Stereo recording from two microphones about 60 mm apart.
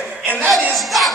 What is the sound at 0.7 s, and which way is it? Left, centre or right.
Speech, centre.